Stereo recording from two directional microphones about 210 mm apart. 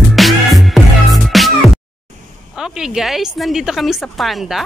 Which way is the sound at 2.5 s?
5° right (ahead or behind).